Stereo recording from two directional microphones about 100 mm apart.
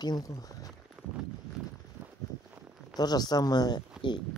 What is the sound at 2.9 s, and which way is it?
Speech, 40° left (ahead or behind).